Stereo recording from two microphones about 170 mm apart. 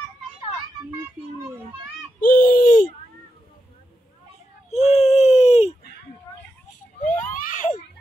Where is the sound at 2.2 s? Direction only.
55° left (ahead or behind).